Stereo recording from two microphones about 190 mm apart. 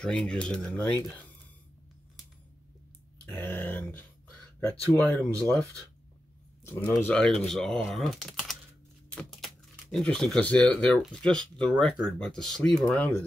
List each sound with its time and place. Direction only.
0.0 s speech: 5° left (ahead or behind)
3.3 s dog: 10° left (ahead or behind)
4.6 s speech: 5° left (ahead or behind)
6.9 s speech: 10° left (ahead or behind)